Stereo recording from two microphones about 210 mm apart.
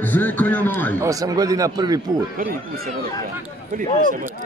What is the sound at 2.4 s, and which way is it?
Speech, 45° right (ahead or behind).